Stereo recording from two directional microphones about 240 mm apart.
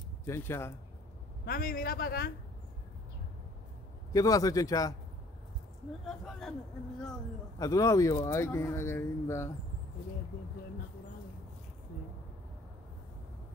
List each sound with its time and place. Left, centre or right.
0.3 s speech: centre
1.4 s a man's voice: left
4.1 s speech: centre
6.0 s speech: centre
7.5 s speech: centre